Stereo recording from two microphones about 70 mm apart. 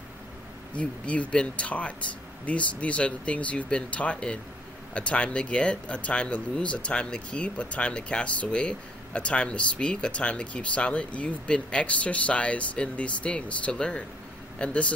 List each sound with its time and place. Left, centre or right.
0.7 s speech: centre